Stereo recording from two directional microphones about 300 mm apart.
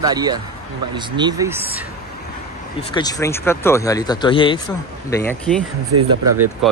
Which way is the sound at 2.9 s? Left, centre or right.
Centre.